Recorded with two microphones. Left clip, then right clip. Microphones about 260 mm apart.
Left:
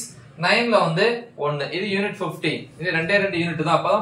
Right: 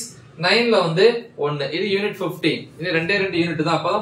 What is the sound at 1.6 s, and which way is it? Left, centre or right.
A man's voice, centre.